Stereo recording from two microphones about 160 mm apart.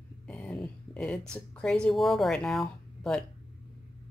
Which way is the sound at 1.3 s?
5° left (ahead or behind).